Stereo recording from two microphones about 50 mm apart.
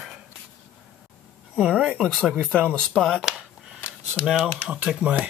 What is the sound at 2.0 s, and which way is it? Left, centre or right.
Speech, centre.